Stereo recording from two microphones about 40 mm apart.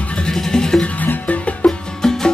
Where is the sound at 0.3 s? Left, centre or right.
Centre.